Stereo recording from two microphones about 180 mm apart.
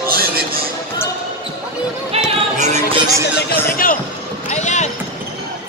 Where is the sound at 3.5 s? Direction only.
50° left (ahead or behind).